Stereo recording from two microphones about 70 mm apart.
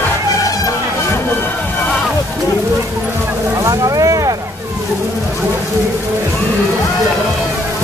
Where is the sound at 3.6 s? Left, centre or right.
Right.